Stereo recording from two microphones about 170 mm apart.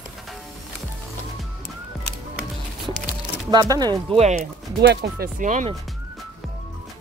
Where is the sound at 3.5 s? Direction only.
25° right (ahead or behind).